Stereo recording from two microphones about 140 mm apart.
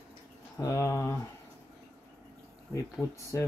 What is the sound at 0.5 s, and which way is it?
Speech, 20° left (ahead or behind).